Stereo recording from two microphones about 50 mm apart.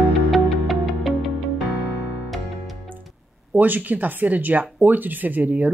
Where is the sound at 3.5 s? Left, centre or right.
Right.